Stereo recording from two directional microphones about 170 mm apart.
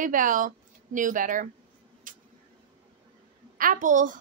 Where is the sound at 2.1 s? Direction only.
50° right (ahead or behind).